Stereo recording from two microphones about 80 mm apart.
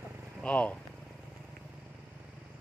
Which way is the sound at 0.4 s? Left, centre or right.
Centre.